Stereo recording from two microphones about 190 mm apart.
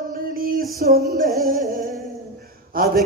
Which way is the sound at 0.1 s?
50° right (ahead or behind).